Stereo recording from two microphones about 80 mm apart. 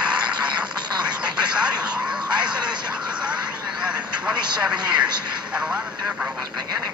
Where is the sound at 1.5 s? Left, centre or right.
Centre.